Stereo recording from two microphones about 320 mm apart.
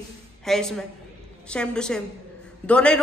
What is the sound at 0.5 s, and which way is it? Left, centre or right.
A woman's voice, centre.